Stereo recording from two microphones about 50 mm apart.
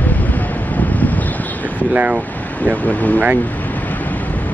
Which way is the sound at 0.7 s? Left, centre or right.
Left.